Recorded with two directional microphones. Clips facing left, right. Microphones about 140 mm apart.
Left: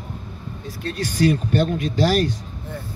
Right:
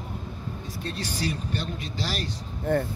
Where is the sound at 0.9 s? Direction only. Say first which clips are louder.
Left 13 dB; 50° left (ahead or behind).